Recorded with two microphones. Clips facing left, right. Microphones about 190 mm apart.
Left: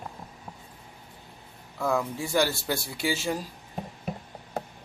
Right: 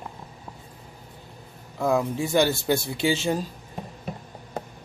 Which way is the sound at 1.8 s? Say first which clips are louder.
Right 4 dB; 20° right (ahead or behind).